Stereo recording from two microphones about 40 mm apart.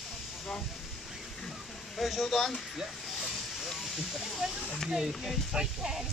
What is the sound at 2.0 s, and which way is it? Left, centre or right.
Speech, centre.